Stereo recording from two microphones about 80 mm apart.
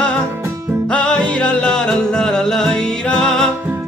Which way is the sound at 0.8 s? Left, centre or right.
Centre.